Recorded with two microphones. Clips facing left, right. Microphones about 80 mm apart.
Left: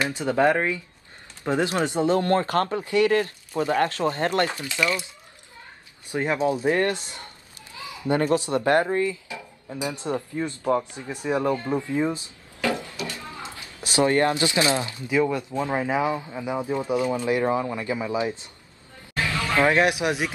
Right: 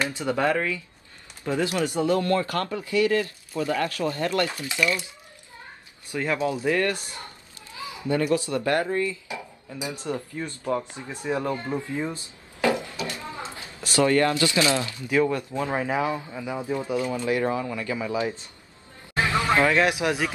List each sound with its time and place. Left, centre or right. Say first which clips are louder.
0.0 s speech: left 3 dB; left
4.7 s speech: even; left
6.1 s speech: left 2 dB; left
8.1 s speech: left 2 dB; left
12.5 s a sound: right 2 dB; right
13.8 s speech: even; left
19.1 s a sound: right 3 dB; right
19.6 s speech: left 6 dB; left